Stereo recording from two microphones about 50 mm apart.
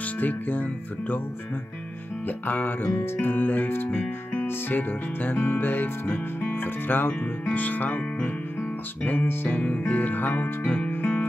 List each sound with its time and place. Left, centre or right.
0.0 s music: left
2.2 s music: left
2.8 s speech: left
4.0 s music: left
9.6 s music: left